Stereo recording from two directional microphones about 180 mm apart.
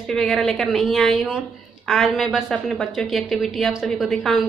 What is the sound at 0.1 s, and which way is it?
A woman's voice, centre (ahead or behind).